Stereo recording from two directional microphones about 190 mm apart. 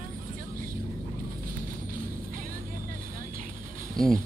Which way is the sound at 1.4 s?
45° right (ahead or behind).